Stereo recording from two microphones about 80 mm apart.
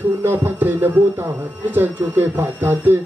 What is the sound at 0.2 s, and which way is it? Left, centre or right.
Speech, right.